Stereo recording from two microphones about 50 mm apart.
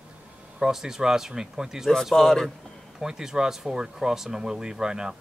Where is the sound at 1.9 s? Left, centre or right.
Centre.